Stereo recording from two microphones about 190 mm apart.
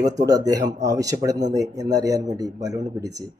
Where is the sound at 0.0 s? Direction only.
20° right (ahead or behind).